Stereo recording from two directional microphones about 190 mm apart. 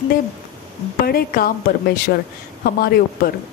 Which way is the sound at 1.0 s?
50° left (ahead or behind).